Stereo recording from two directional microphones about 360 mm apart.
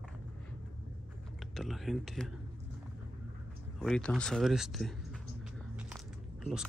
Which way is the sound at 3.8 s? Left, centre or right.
Centre.